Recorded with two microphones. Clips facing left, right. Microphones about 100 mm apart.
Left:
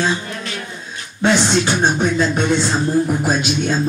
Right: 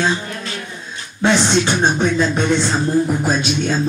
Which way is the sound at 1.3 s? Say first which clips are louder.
Even; centre (ahead or behind).